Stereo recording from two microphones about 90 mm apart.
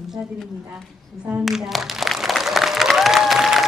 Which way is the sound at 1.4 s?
Centre (ahead or behind).